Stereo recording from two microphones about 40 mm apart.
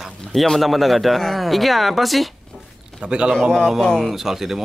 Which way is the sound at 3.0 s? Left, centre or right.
Right.